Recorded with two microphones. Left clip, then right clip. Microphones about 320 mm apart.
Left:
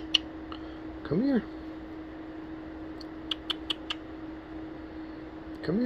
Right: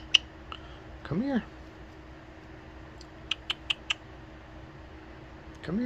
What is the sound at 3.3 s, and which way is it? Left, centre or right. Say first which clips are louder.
Typing: right 1 dB; centre.